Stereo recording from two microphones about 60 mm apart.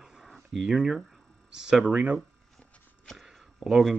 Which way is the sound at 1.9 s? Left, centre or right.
Right.